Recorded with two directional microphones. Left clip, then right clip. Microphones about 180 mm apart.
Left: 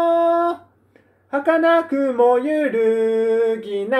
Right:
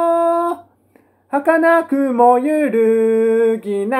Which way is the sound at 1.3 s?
20° right (ahead or behind).